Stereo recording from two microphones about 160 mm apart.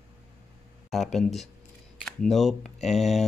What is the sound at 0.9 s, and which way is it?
Speech, centre (ahead or behind).